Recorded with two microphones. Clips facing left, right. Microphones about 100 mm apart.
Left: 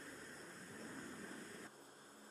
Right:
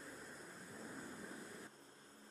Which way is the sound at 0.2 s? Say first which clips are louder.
Right 1 dB; 10° right (ahead or behind).